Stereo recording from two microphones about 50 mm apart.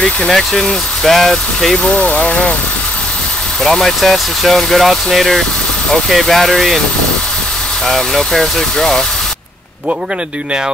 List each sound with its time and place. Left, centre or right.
0.0 s speech: centre
2.0 s speech: centre
3.6 s speech: centre
7.8 s speech: centre